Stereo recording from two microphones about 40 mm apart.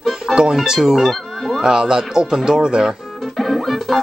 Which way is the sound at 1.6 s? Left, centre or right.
Centre.